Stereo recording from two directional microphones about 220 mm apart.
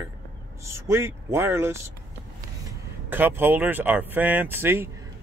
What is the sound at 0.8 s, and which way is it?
Speech, 10° right (ahead or behind).